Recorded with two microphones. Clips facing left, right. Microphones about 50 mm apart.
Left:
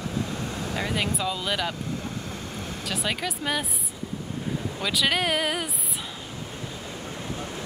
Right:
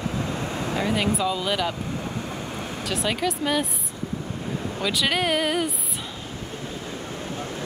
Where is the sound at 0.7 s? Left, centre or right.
Centre.